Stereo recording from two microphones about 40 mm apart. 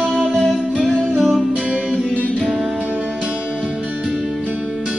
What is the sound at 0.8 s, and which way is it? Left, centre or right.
Music, right.